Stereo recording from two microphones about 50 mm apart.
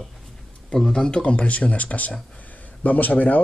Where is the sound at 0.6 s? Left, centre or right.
Centre; by 3.3 s left.